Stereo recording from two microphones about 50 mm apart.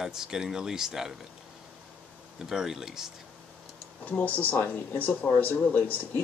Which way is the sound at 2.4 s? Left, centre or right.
Centre.